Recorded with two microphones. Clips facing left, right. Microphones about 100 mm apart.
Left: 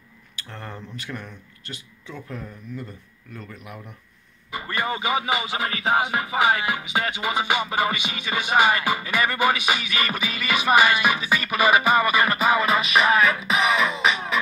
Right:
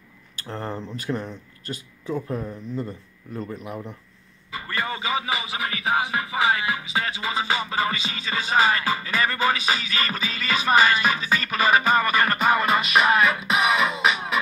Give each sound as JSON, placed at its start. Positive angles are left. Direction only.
{"t": 0.4, "sound": "speech", "side_deg": -35}
{"t": 4.5, "sound": "speech", "side_deg": 20}